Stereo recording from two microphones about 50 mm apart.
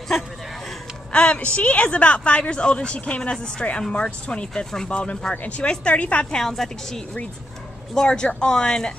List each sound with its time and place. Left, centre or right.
1.1 s a woman's voice: left
6.3 s speech: centre